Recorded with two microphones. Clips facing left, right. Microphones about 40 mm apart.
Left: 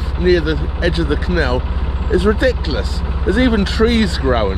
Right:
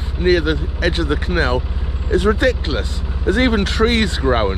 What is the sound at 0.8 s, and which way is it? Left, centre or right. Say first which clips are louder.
Speech: left 1 dB; right.